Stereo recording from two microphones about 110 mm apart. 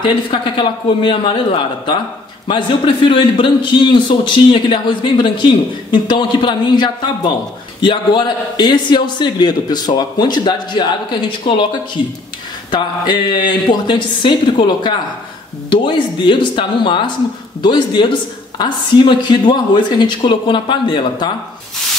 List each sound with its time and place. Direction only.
0.0 s a man's voice: 50° left (ahead or behind)
12.7 s a man's voice: 45° left (ahead or behind)